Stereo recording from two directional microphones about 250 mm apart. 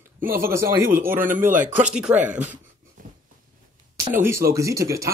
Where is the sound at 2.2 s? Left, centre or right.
Right.